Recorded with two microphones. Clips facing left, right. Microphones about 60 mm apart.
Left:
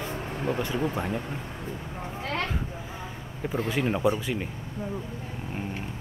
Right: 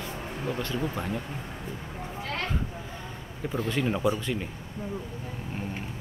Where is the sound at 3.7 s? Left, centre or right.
Centre.